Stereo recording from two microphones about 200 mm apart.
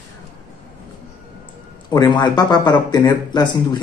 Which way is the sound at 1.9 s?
20° left (ahead or behind).